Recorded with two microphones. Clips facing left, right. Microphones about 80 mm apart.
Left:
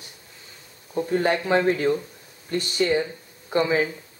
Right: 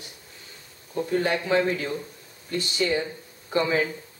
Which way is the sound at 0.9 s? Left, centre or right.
Left.